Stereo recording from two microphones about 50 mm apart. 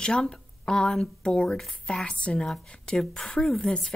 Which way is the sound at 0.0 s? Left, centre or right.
Centre.